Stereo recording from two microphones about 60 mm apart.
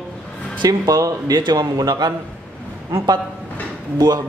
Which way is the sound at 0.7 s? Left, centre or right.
Right.